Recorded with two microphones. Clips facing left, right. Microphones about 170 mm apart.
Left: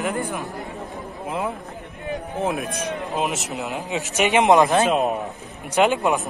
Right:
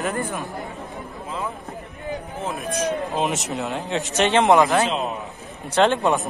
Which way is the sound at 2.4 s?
60° left (ahead or behind).